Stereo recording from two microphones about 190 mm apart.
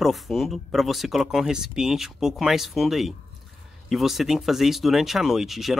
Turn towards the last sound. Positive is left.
turn(degrees=0)  # may be behind; listen again after turning